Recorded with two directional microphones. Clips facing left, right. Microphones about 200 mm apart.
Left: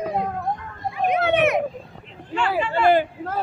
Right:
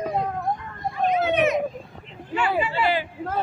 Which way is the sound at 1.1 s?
65° left (ahead or behind).